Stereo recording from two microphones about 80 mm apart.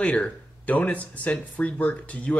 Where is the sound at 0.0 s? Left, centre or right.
Centre.